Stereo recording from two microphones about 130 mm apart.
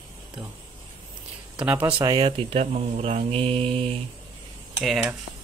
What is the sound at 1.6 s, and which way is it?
Speech, 10° right (ahead or behind).